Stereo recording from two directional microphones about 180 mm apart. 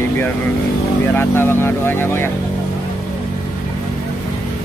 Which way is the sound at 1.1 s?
10° left (ahead or behind).